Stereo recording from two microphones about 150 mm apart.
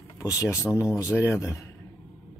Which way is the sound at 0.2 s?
20° left (ahead or behind).